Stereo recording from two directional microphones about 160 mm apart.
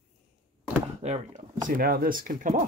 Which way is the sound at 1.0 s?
45° right (ahead or behind).